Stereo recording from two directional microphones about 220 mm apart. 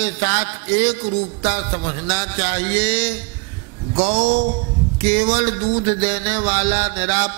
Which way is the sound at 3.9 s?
30° right (ahead or behind).